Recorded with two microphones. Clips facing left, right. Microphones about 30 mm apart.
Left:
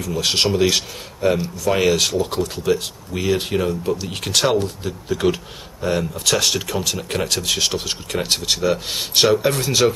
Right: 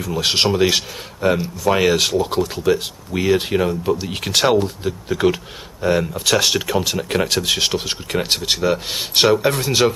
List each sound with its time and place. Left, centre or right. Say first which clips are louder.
0.0 s speech: right 1 dB; centre